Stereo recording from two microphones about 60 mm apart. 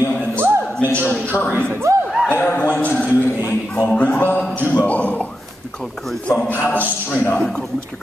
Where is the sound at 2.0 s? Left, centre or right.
Centre.